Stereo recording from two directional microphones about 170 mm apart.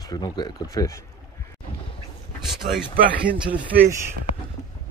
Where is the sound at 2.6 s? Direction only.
50° right (ahead or behind).